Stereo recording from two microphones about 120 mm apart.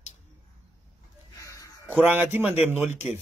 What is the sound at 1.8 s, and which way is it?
Speech, 15° right (ahead or behind).